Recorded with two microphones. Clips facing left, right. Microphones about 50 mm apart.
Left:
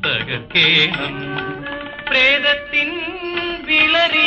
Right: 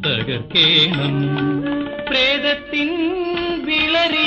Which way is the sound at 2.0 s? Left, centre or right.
Left.